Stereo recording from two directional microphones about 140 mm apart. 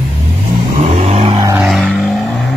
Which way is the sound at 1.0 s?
50° right (ahead or behind).